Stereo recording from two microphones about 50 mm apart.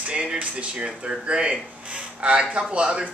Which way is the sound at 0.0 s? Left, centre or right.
Right.